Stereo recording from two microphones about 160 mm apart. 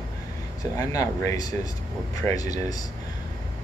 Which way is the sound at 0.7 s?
20° left (ahead or behind).